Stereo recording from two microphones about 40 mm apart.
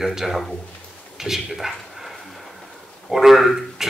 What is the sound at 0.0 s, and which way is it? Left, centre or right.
Speech, centre.